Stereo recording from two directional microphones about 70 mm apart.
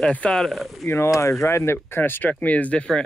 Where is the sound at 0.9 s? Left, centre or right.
Left.